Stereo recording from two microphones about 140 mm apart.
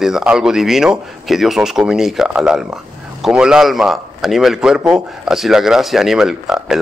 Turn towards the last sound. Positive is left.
turn(degrees=-5)  # may be behind; listen again after turning